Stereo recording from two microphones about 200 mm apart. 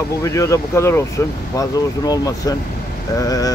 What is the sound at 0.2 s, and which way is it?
Speech, 15° left (ahead or behind).